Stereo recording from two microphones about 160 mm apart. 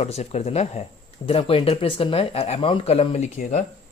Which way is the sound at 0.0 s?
40° left (ahead or behind).